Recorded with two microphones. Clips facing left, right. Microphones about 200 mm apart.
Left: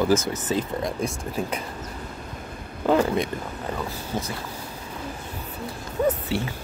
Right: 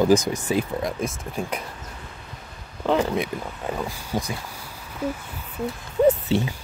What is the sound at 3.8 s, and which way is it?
Speech, 15° right (ahead or behind).